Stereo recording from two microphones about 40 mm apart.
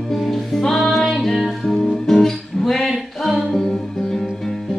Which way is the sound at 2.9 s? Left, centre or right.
Centre.